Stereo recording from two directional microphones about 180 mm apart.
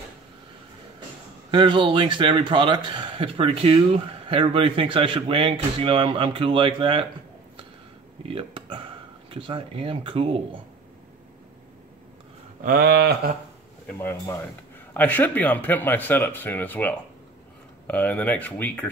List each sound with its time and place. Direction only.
1.5 s a man's voice: 30° right (ahead or behind)
8.3 s a man's voice: 30° right (ahead or behind)
12.6 s a sound: 60° right (ahead or behind)
13.8 s speech: 15° left (ahead or behind)